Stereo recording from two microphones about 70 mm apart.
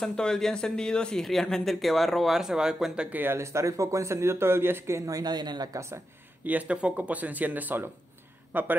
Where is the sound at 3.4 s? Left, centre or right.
Right.